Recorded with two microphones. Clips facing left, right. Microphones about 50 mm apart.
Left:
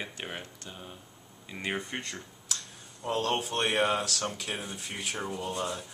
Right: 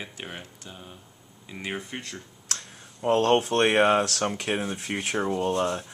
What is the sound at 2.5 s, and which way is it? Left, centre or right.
Clicking, right.